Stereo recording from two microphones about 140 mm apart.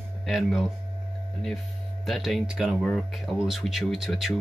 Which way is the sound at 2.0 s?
Centre (ahead or behind).